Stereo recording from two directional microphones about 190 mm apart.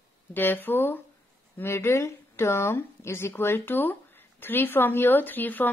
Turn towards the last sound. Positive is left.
turn(degrees=10)  # may be behind; listen again after turning